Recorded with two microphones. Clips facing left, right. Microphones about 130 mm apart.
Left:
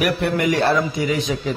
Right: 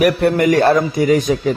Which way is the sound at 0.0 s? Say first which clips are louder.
Right 6 dB; 45° right (ahead or behind).